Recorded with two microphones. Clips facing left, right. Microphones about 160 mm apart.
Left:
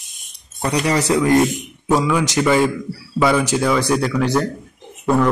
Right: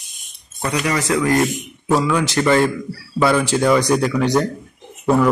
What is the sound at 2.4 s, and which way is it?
Speech, 5° left (ahead or behind).